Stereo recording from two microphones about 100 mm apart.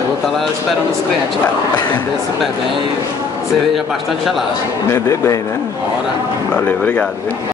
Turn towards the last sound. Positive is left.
turn(degrees=15)  # may be behind; listen again after turning